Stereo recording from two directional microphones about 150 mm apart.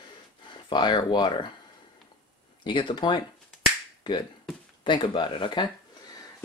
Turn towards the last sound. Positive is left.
turn(degrees=30)  # may be behind; listen again after turning